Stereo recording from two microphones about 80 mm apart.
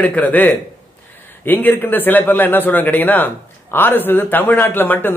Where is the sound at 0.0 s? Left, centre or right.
Left.